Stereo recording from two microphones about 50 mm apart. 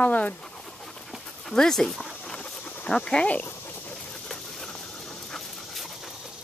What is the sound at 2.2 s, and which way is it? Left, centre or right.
Dog, centre.